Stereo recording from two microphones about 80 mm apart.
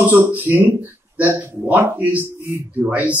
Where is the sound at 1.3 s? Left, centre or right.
Right.